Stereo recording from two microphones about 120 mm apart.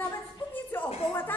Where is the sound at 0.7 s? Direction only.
15° left (ahead or behind).